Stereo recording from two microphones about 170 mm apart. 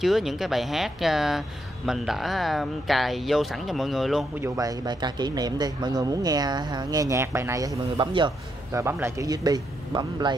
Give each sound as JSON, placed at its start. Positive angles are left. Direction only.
{"t": 0.0, "sound": "speech", "side_deg": 0}
{"t": 4.4, "sound": "speech", "side_deg": -20}
{"t": 8.7, "sound": "speech", "side_deg": -15}